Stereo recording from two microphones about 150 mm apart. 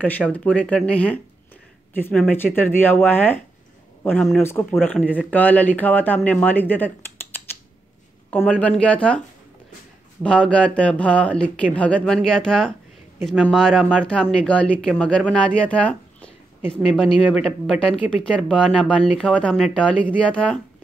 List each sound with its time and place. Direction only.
0.3 s speech: 10° left (ahead or behind)
10.2 s speech: 5° left (ahead or behind)